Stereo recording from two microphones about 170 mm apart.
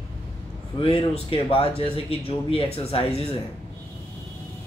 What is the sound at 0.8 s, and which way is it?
Speech, 35° left (ahead or behind).